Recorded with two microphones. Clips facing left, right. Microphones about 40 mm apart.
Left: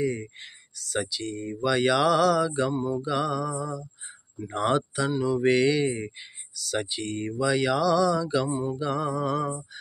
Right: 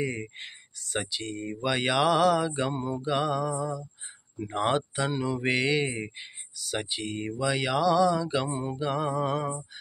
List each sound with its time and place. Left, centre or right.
0.0 s speech: right
2.7 s mantra: right
3.0 s speech: right
5.1 s mantra: right
5.4 s speech: centre
8.5 s mantra: right
8.7 s speech: centre